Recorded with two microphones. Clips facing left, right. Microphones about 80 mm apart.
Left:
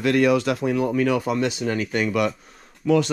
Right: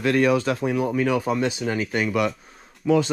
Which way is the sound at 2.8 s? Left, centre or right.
Right.